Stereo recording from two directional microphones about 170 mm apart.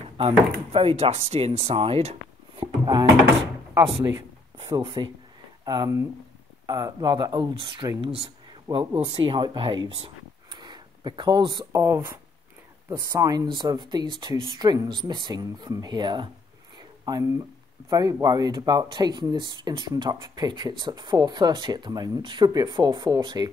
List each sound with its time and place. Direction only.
0.2 s speech: 35° right (ahead or behind)